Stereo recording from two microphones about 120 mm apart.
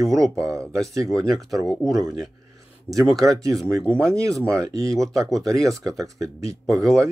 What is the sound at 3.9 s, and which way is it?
Speech, 25° right (ahead or behind).